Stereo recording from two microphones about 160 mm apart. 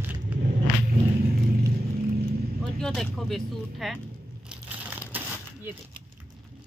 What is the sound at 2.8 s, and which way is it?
Speech, 5° left (ahead or behind).